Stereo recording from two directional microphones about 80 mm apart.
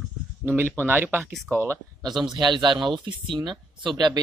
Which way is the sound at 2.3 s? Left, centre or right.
Right.